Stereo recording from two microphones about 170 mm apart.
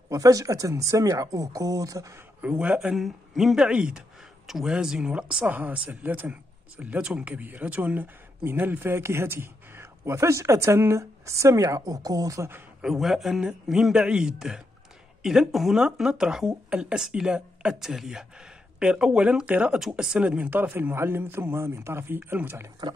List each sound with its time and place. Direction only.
0.1 s speech: 20° right (ahead or behind)
2.6 s a man's voice: 5° right (ahead or behind)
12.8 s speech: centre (ahead or behind)